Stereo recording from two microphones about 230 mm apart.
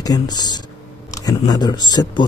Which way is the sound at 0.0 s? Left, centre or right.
Centre.